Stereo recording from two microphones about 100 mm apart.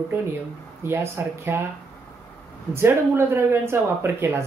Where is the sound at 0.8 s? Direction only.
25° right (ahead or behind).